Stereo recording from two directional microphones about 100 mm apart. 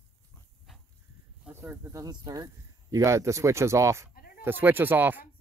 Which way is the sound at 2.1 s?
45° right (ahead or behind).